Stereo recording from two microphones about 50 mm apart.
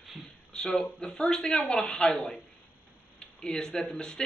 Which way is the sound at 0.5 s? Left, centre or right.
Centre.